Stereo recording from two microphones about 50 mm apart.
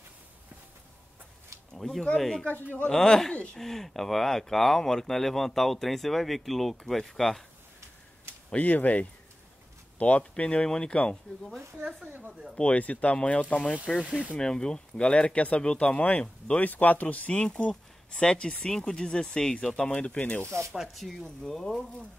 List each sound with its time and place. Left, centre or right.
1.7 s a sound: centre
2.1 s speech: centre
2.4 s speech: left
2.9 s speech: centre
8.5 s speech: left
12.1 s speech: right
12.5 s speech: left
14.0 s speech: right
14.4 s speech: centre
16.6 s speech: left
17.4 s speech: left
20.9 s speech: centre